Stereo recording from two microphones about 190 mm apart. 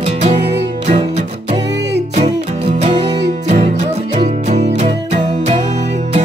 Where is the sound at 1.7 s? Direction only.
65° right (ahead or behind).